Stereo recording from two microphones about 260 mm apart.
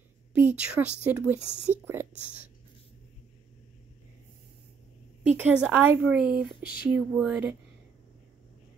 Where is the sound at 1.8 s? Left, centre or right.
Centre.